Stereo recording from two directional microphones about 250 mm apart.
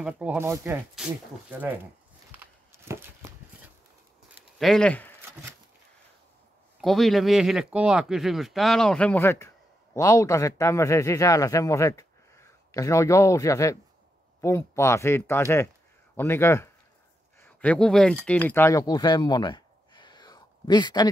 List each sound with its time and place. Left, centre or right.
0.0 s speech: centre
2.3 s a sound: centre
4.6 s speech: centre
6.8 s speech: centre